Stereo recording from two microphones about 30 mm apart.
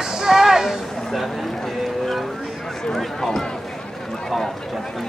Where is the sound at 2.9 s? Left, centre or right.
Centre.